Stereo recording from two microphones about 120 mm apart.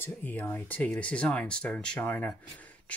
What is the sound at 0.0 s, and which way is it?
Speech, 15° left (ahead or behind).